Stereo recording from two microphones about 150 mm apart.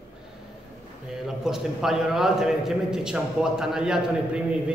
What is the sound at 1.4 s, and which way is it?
A man's voice, 5° right (ahead or behind).